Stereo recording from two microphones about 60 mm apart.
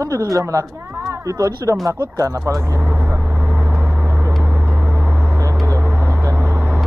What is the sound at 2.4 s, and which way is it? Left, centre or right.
Speech, right.